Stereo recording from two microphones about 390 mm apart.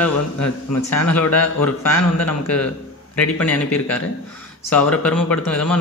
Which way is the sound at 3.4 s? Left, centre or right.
Centre.